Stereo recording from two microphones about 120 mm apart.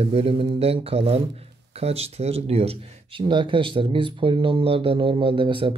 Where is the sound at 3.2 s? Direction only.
40° right (ahead or behind).